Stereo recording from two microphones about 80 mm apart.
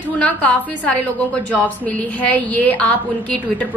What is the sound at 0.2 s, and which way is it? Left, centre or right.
A woman's voice, centre.